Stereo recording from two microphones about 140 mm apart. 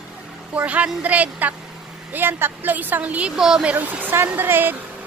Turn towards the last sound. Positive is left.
turn(degrees=-15)  # may be behind; listen again after turning